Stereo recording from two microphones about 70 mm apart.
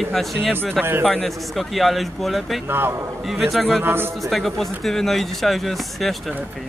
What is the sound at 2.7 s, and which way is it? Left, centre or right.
Speech, right.